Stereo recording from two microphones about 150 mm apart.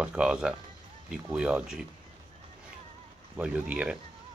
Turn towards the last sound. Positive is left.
turn(degrees=-10)  # may be behind; listen again after turning